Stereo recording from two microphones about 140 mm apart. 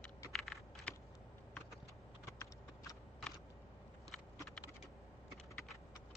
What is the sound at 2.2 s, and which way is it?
Computer keyboard, 25° left (ahead or behind).